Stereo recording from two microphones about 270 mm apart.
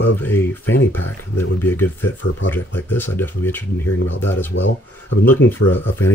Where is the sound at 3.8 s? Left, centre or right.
Left.